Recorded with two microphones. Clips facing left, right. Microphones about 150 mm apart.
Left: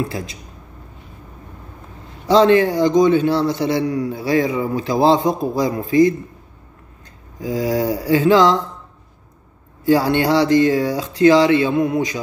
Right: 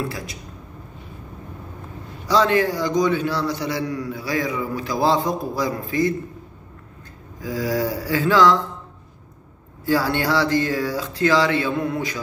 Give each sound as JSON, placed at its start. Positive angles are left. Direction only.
{"t": 2.2, "sound": "a man's voice", "side_deg": 25}
{"t": 7.4, "sound": "a man's voice", "side_deg": 20}
{"t": 9.8, "sound": "a man's voice", "side_deg": 20}